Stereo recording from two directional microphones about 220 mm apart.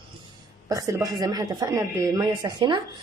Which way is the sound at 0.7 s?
15° right (ahead or behind).